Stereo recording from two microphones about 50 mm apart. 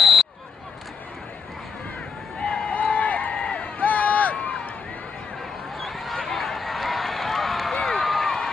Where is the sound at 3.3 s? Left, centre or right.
Centre.